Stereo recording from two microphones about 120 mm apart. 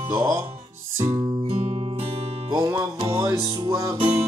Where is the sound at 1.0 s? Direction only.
55° right (ahead or behind).